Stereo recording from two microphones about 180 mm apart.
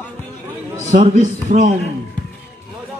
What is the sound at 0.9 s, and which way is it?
Speech, 45° right (ahead or behind).